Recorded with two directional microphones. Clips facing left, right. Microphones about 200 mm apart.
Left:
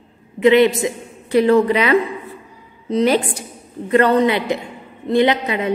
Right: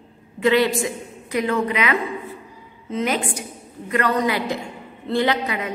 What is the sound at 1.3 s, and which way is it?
A woman's voice, 35° left (ahead or behind).